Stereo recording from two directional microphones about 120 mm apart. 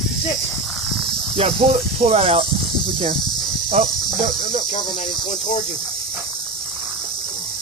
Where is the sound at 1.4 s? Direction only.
60° right (ahead or behind).